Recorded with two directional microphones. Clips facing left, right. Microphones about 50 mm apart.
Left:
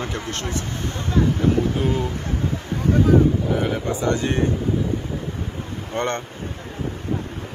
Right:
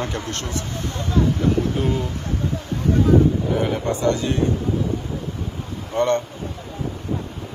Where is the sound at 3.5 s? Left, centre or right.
Centre.